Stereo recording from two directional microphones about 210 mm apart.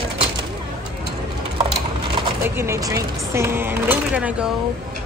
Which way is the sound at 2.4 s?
10° right (ahead or behind).